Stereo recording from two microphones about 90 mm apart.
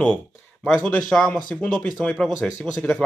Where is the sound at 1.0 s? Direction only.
5° left (ahead or behind).